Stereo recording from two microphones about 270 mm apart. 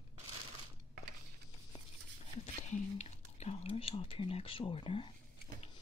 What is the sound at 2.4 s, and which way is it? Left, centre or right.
Whispering, left.